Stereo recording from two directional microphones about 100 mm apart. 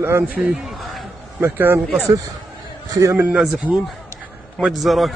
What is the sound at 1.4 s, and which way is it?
Speech, 20° right (ahead or behind).